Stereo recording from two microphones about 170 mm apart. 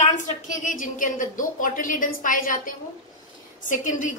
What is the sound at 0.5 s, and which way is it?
A woman's voice, 50° left (ahead or behind).